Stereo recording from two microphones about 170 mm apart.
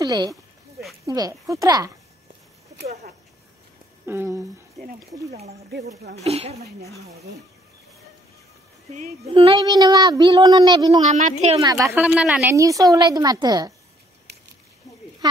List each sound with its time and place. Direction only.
0.0 s speech: 20° right (ahead or behind)
4.0 s speech: 15° right (ahead or behind)
5.5 s speech: 70° right (ahead or behind)
6.2 s speech: 40° right (ahead or behind)
8.9 s a child's voice: 45° right (ahead or behind)
9.3 s speech: 30° right (ahead or behind)
11.0 s speech: 45° right (ahead or behind)
11.6 s speech: 20° right (ahead or behind)
12.5 s speech: 20° right (ahead or behind)